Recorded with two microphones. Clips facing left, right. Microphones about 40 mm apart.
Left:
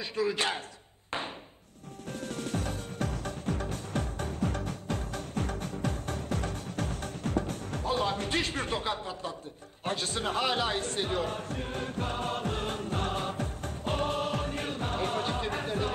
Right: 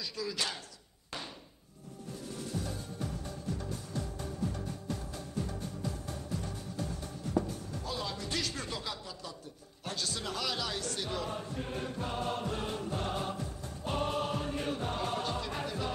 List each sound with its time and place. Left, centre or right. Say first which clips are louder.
0.0 s speech: left 7 dB; left
2.0 s music: left 6 dB; left
7.8 s speech: left 10 dB; left
12.0 s music: left 3 dB; left